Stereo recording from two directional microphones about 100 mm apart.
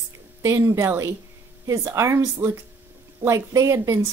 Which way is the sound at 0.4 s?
30° right (ahead or behind).